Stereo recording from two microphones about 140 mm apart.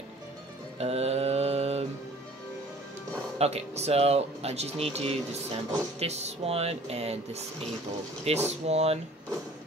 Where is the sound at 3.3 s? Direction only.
50° right (ahead or behind).